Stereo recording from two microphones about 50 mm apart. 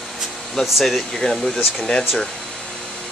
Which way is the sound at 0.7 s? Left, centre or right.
Centre.